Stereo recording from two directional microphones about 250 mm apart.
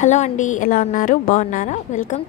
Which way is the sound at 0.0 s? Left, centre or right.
Left.